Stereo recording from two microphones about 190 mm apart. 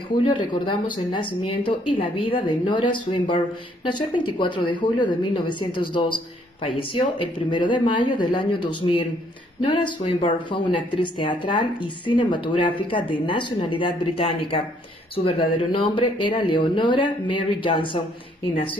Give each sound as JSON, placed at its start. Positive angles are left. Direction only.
{"t": 0.2, "sound": "a woman's voice", "side_deg": 25}